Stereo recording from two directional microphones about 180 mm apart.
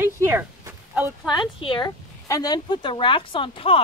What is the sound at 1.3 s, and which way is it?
Speech, 25° left (ahead or behind).